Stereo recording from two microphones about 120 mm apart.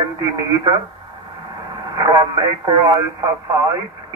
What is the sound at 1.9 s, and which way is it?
Radio, 30° right (ahead or behind).